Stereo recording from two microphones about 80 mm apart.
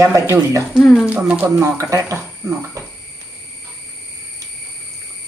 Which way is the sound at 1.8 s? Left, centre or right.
Right.